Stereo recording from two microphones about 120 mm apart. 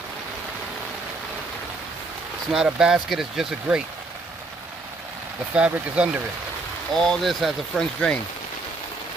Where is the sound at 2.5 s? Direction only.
5° right (ahead or behind).